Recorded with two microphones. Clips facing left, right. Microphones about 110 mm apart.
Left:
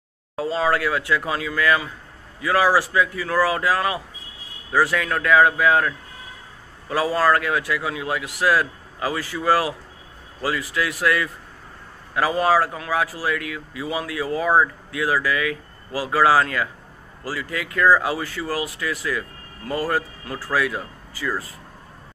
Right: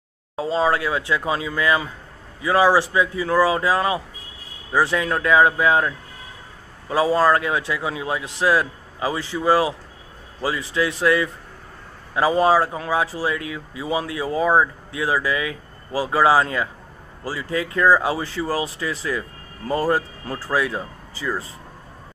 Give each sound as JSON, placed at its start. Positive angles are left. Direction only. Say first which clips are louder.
{"t": 0.4, "sound": "speech", "louder": "right 1 dB", "side_deg": -25}